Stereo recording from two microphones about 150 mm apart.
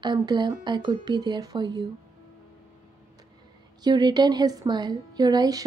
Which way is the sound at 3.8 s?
30° right (ahead or behind).